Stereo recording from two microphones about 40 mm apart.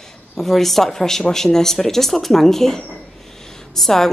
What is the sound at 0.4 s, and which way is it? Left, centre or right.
Speech, centre.